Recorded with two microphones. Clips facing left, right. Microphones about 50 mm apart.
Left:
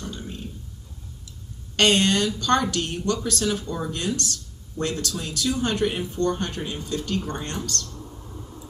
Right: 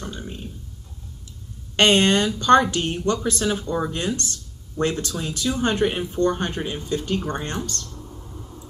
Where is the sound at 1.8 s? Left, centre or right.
Right.